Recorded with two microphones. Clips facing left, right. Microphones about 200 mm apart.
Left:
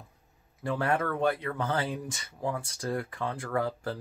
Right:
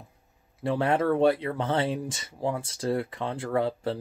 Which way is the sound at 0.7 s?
25° right (ahead or behind).